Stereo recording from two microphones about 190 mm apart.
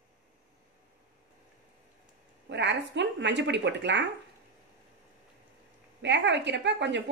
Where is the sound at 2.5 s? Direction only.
65° right (ahead or behind).